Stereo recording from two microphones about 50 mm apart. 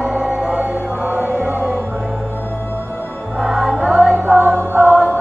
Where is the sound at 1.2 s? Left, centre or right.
Right.